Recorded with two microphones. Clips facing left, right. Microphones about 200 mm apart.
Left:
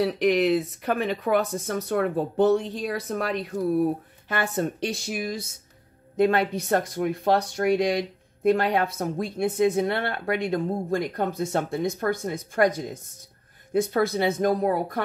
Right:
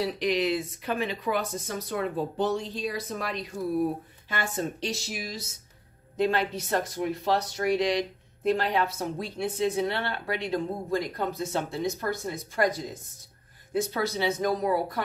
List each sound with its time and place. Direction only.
0.0 s speech: 55° left (ahead or behind)
13.9 s speech: 50° left (ahead or behind)